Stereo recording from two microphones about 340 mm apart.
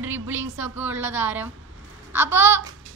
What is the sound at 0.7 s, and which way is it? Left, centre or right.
A woman's voice, centre.